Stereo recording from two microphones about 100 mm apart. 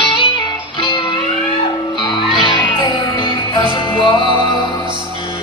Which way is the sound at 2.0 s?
50° left (ahead or behind).